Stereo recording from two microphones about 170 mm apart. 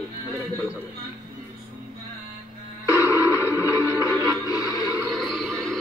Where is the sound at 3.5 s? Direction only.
20° left (ahead or behind).